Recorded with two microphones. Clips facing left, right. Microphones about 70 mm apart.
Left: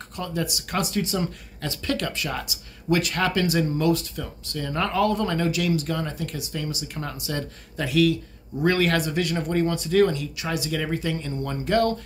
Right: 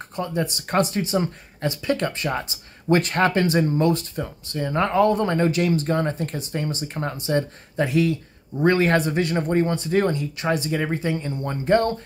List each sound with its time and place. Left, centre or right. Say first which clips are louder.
0.1 s speech: right 3 dB; right
0.5 s speech: right 6 dB; right